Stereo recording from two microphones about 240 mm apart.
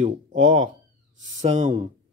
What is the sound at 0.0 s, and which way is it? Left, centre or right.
Speech, right.